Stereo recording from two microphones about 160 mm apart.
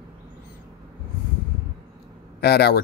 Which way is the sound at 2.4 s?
90° left.